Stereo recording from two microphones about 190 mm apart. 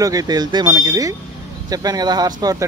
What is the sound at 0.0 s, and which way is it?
Speech, 20° right (ahead or behind).